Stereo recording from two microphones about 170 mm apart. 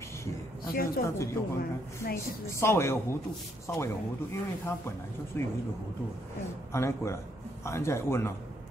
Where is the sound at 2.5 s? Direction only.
15° left (ahead or behind).